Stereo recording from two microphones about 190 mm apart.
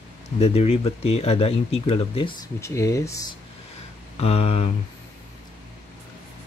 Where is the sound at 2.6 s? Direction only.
15° left (ahead or behind).